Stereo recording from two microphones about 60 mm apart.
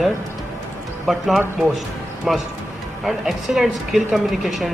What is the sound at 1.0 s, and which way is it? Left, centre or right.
A woman's voice, centre.